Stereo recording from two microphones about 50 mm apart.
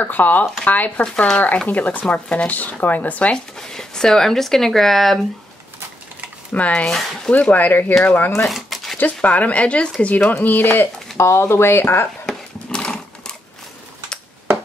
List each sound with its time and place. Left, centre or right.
0.0 s speech: left
1.0 s speech: centre
1.7 s speech: left
3.5 s speech: centre
6.5 s speech: left
6.9 s speech: centre
7.2 s speech: left
7.5 s speech: left
8.5 s a sound: centre
8.9 s speech: left
10.4 s speech: left
11.1 s speech: left
12.3 s a sound: centre